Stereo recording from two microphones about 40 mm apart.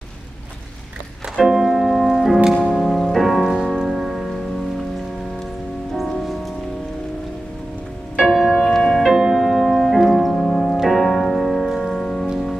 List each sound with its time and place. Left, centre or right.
1.5 s music: centre
5.9 s music: centre
8.2 s music: centre
8.5 s music: centre
9.0 s music: centre
9.4 s piano: centre